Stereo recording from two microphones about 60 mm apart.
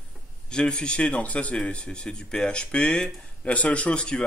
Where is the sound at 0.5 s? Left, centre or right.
Centre.